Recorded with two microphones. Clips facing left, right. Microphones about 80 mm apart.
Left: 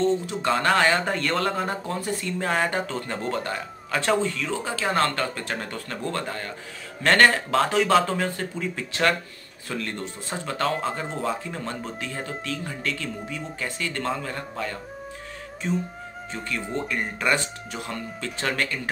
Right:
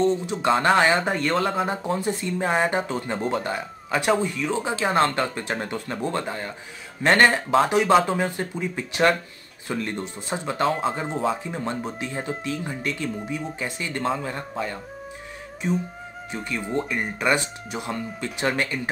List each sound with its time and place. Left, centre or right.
0.0 s speech: centre
1.3 s speech: centre
1.8 s speech: centre
15.6 s speech: centre